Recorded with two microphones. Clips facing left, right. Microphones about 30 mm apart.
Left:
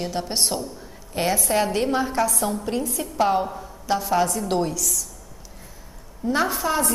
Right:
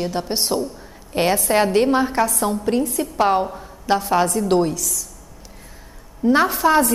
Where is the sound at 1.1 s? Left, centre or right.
Right.